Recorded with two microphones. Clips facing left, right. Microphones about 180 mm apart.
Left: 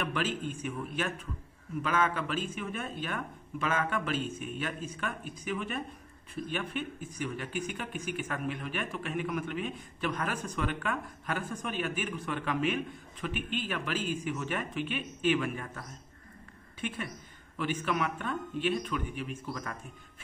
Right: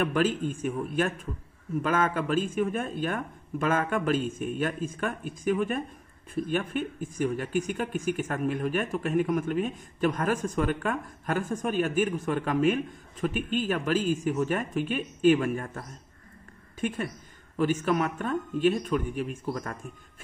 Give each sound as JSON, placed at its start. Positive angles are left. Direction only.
{"t": 0.0, "sound": "speech", "side_deg": -45}
{"t": 16.8, "sound": "speech", "side_deg": -45}